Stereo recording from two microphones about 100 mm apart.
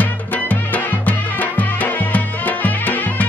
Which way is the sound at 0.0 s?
15° left (ahead or behind).